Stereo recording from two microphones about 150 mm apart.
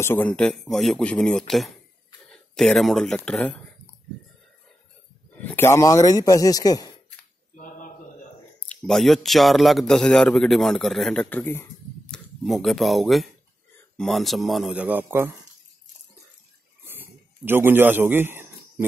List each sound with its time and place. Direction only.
0.0 s a man's voice: 15° left (ahead or behind)
5.4 s speech: 15° left (ahead or behind)
7.5 s a sound: 60° left (ahead or behind)
8.6 s a man's voice: 5° left (ahead or behind)
12.1 s a man's voice: centre (ahead or behind); by 15.3 s 15° right (ahead or behind)
16.8 s a sound: 15° right (ahead or behind)